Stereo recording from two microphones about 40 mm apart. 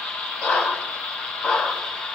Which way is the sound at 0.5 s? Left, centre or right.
Left.